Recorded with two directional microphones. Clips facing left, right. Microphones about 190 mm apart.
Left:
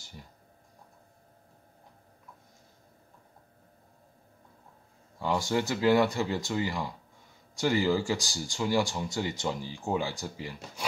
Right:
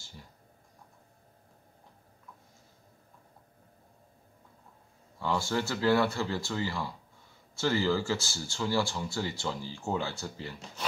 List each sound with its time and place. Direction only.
5.2 s speech: 15° left (ahead or behind)